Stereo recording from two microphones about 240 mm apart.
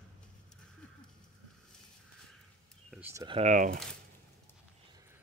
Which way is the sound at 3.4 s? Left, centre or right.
Right.